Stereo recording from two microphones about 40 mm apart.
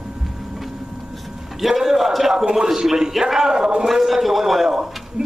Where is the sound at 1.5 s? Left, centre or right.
Centre.